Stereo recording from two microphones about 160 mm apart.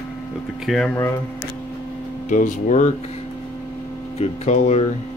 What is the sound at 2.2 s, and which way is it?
Speech, 50° left (ahead or behind).